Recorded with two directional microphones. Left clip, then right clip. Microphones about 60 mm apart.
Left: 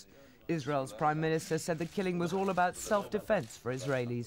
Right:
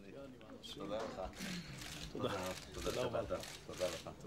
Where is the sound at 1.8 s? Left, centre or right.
Right.